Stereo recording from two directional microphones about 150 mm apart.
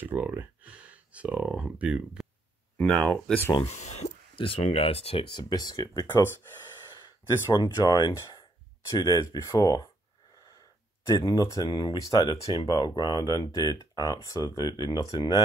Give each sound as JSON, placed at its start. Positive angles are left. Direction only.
{"t": 0.0, "sound": "speech", "side_deg": -10}
{"t": 2.8, "sound": "speech", "side_deg": 5}
{"t": 3.6, "sound": "speech", "side_deg": 50}
{"t": 7.5, "sound": "speech", "side_deg": 30}
{"t": 11.1, "sound": "speech", "side_deg": 25}